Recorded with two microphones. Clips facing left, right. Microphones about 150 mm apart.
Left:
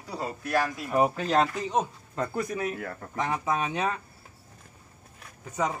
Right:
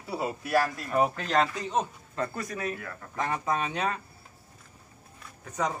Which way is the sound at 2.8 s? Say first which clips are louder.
Left 5 dB; 35° left (ahead or behind).